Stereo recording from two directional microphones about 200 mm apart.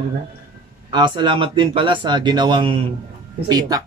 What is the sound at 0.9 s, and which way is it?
Speech, 25° right (ahead or behind).